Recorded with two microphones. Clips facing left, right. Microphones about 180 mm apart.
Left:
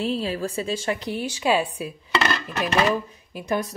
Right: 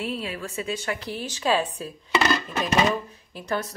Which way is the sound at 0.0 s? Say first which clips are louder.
Left 5 dB; 30° left (ahead or behind).